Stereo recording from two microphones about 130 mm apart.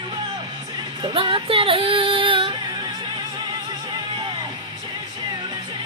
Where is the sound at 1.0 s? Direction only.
40° right (ahead or behind).